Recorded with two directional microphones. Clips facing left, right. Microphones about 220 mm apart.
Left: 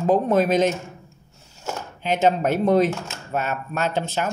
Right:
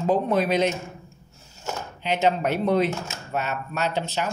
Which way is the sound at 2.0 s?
45° left (ahead or behind).